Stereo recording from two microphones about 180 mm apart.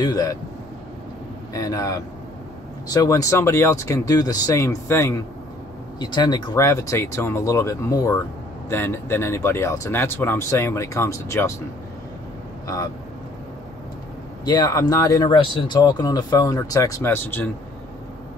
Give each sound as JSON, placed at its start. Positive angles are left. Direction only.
{"t": 0.0, "sound": "speech", "side_deg": 20}
{"t": 1.5, "sound": "speech", "side_deg": 20}
{"t": 12.6, "sound": "speech", "side_deg": 20}
{"t": 14.4, "sound": "speech", "side_deg": 20}